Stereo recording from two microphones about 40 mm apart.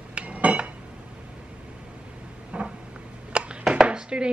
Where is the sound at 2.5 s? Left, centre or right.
Right.